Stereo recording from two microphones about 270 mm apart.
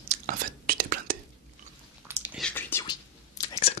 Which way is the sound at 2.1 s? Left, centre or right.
Centre.